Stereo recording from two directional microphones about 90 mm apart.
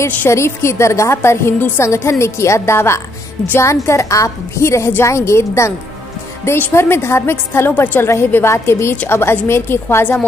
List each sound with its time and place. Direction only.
0.3 s a woman's voice: 30° left (ahead or behind)
8.9 s a woman's voice: 15° left (ahead or behind)